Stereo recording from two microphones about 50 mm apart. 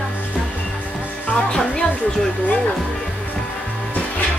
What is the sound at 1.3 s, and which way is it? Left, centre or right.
Music, centre.